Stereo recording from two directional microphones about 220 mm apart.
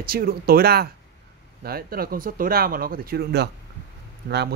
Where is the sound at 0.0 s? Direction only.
40° right (ahead or behind).